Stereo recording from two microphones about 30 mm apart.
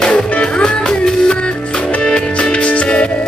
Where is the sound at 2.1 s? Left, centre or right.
Left.